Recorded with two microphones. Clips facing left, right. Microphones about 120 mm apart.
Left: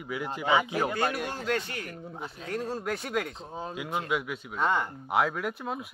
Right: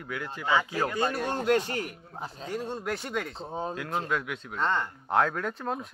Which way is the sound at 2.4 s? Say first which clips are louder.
Left 1 dB; centre (ahead or behind).